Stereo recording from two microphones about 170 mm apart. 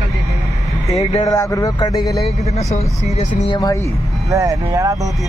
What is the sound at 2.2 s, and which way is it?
Speech, 35° left (ahead or behind).